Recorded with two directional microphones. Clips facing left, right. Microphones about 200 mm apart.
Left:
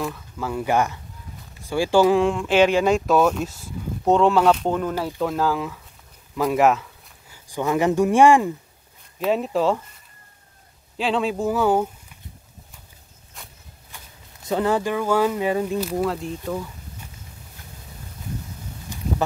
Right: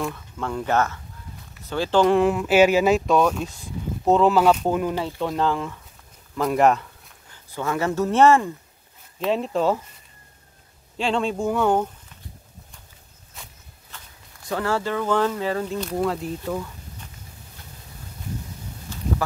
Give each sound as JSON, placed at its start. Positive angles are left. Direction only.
{"t": 0.0, "sound": "speech", "side_deg": 5}
{"t": 4.9, "sound": "speech", "side_deg": 5}
{"t": 6.3, "sound": "a sound", "side_deg": 5}
{"t": 7.4, "sound": "speech", "side_deg": 15}
{"t": 9.2, "sound": "speech", "side_deg": 5}
{"t": 11.0, "sound": "speech", "side_deg": 0}
{"t": 13.4, "sound": "insect", "side_deg": 0}
{"t": 13.9, "sound": "speech", "side_deg": 20}
{"t": 15.8, "sound": "speech", "side_deg": 5}
{"t": 18.9, "sound": "a sound", "side_deg": 15}